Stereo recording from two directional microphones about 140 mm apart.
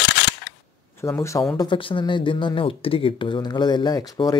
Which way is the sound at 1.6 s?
35° left (ahead or behind).